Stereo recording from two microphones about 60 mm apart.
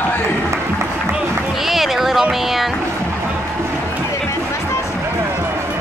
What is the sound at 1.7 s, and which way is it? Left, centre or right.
Run, centre.